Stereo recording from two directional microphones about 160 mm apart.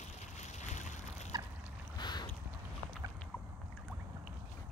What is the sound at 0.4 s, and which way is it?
Boat, 50° left (ahead or behind).